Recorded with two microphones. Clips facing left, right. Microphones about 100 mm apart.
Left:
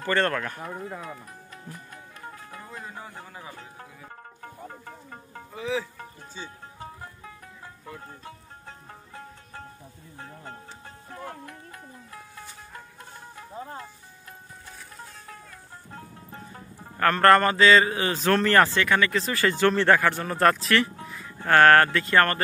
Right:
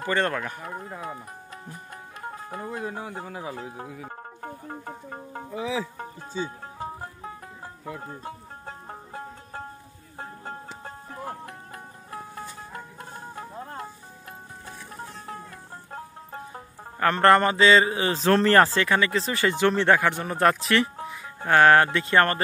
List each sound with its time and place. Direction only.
0.0 s speech: 10° right (ahead or behind)
1.0 s speech: 25° right (ahead or behind)
2.3 s music: 35° right (ahead or behind)
2.7 s speech: 65° right (ahead or behind)
3.5 s a man's voice: 30° right (ahead or behind)
6.8 s music: 30° right (ahead or behind)
15.9 s music: 40° right (ahead or behind)
17.0 s a man's voice: 20° right (ahead or behind)